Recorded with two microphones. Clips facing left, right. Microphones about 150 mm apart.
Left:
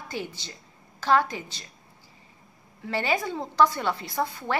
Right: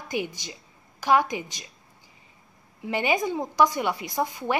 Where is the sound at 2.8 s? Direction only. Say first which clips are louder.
Right 2 dB; 15° right (ahead or behind).